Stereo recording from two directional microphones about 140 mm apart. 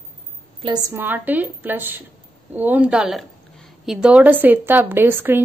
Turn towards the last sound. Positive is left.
turn(degrees=-15)  # may be behind; listen again after turning